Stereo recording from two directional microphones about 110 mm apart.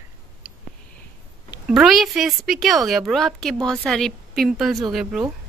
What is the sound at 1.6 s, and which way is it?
A woman's voice, 5° right (ahead or behind).